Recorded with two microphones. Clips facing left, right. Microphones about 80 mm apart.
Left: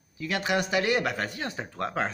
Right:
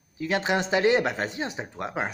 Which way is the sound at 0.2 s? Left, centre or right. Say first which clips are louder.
Right 2 dB; right.